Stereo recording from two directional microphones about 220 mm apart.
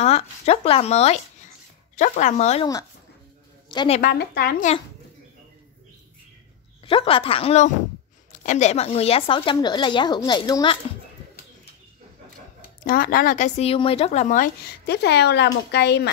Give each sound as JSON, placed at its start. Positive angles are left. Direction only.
{"t": 0.0, "sound": "a woman's voice", "side_deg": 30}
{"t": 4.0, "sound": "speech", "side_deg": 45}
{"t": 6.9, "sound": "speech", "side_deg": 25}
{"t": 12.8, "sound": "speech", "side_deg": 40}